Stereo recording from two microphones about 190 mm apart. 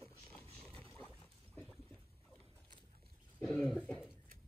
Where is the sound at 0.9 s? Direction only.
5° left (ahead or behind).